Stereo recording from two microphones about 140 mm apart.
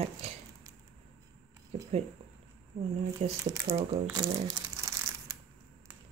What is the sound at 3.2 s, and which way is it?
Speech, 60° right (ahead or behind).